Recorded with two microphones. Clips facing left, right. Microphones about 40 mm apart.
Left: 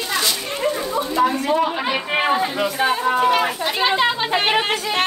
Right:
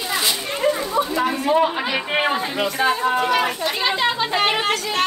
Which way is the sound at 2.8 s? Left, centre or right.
Centre.